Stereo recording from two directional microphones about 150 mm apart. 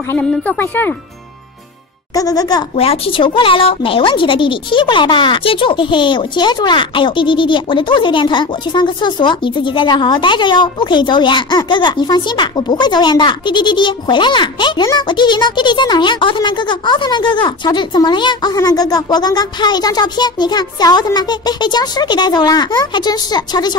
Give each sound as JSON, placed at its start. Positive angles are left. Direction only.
{"t": 0.1, "sound": "speech", "side_deg": 10}
{"t": 2.1, "sound": "speech", "side_deg": 25}
{"t": 2.7, "sound": "a woman's voice", "side_deg": 40}